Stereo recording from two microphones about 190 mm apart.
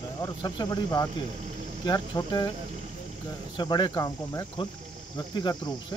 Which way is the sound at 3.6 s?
25° left (ahead or behind).